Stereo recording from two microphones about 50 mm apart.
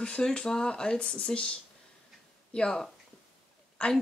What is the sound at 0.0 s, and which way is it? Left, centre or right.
Speech, left.